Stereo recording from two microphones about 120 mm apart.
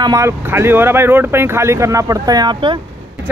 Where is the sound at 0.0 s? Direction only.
30° right (ahead or behind).